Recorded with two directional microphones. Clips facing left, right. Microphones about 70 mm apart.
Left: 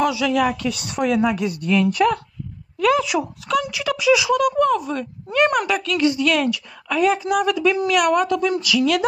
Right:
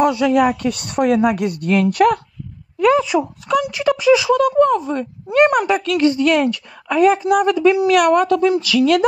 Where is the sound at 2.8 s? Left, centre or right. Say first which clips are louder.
Right 4 dB; right.